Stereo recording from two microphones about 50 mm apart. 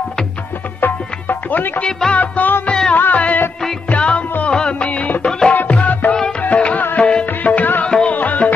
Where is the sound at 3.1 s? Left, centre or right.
Left.